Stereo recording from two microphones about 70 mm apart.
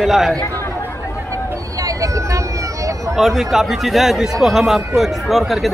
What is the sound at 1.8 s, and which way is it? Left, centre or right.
Vehicle, right.